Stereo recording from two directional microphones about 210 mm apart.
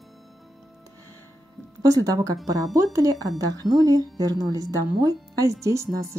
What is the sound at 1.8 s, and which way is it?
Speech, 15° right (ahead or behind).